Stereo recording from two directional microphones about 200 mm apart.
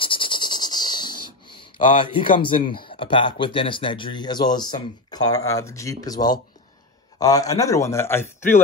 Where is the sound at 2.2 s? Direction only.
25° left (ahead or behind).